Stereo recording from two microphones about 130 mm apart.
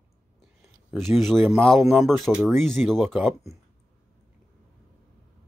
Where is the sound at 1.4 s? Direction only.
15° right (ahead or behind).